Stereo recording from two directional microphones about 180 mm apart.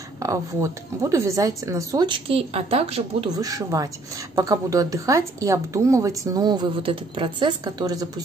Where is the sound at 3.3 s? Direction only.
20° right (ahead or behind).